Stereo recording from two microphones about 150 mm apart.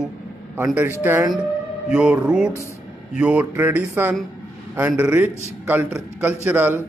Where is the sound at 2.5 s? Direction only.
20° left (ahead or behind).